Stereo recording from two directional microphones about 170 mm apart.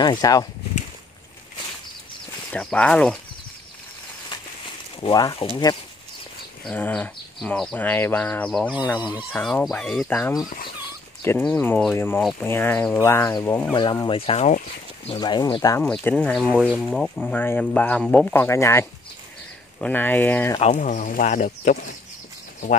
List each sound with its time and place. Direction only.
0.0 s speech: 25° left (ahead or behind)
2.5 s speech: 5° left (ahead or behind)
5.0 s speech: 25° left (ahead or behind)
6.6 s speech: 10° left (ahead or behind)
8.8 s speech: 25° left (ahead or behind)
9.3 s speech: 5° left (ahead or behind)
12.2 s speech: centre (ahead or behind)
12.4 s speech: 10° left (ahead or behind)
14.0 s speech: 35° left (ahead or behind)
15.0 s speech: 25° left (ahead or behind)
15.8 s speech: 10° left (ahead or behind)
20.6 s speech: 50° left (ahead or behind)